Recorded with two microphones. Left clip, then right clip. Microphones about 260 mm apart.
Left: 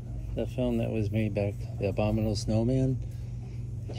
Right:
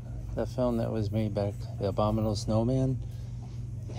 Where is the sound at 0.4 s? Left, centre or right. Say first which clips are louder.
Right 1 dB; right.